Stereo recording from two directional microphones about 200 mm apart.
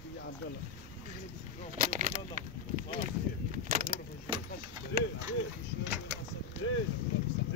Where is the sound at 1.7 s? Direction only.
40° right (ahead or behind).